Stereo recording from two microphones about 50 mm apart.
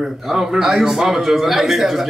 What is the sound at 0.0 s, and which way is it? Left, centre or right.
A man's voice, centre.